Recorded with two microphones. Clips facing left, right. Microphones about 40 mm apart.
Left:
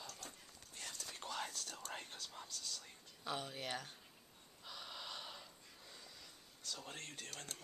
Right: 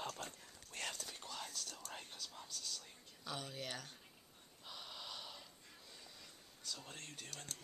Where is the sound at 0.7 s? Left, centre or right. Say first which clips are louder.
Right 6 dB; right.